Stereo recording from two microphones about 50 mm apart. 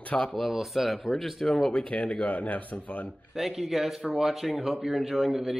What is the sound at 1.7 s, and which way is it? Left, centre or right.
Speech, left.